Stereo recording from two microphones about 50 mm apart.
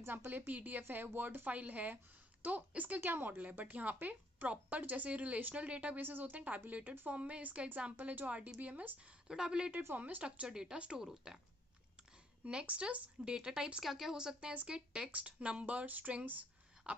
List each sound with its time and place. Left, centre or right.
0.0 s speech: right
0.5 s speech: right
5.9 s speech: right
9.3 s speech: centre
9.9 s speech: right
10.2 s speech: centre
12.4 s speech: right
13.2 s speech: centre
16.9 s a sound: right